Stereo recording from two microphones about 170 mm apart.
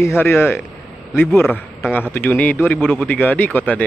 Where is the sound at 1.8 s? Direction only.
10° left (ahead or behind).